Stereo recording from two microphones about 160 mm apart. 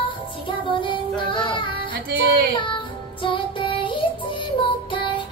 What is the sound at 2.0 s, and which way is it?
Music, 80° right.